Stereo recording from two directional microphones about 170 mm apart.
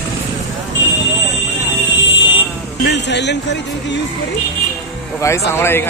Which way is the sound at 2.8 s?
90° left.